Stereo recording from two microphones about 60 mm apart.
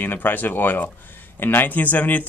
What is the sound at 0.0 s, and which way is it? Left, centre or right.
Speech, left.